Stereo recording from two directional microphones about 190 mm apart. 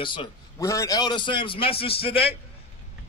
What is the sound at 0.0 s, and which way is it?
A man's voice, 25° left (ahead or behind).